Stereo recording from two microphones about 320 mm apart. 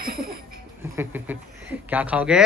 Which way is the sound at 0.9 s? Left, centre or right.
Centre.